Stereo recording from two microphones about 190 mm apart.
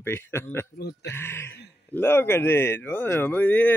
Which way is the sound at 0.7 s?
55° left (ahead or behind).